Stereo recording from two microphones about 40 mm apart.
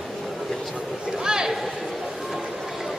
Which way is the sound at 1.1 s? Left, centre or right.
Centre.